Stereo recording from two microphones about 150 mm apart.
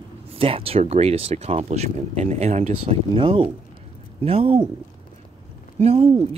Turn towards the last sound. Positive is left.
turn(degrees=-40)  # may be behind; listen again after turning